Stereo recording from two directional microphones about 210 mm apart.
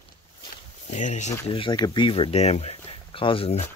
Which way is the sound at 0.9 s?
35° left (ahead or behind).